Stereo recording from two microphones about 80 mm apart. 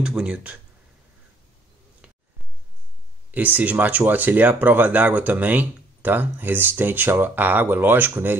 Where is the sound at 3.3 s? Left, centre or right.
Right.